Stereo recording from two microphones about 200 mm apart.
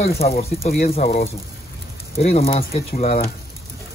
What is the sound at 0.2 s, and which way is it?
Speech, 40° left (ahead or behind).